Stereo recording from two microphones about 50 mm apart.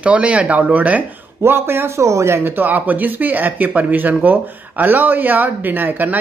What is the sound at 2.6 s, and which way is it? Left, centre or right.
Speech, right.